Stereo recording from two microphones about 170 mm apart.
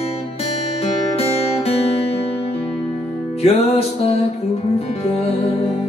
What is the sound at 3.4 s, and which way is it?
Music, 35° left (ahead or behind).